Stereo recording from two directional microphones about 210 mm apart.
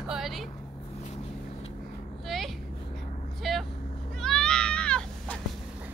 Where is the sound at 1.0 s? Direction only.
30° left (ahead or behind).